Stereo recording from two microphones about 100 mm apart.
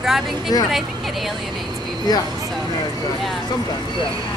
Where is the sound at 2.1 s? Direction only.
40° left (ahead or behind).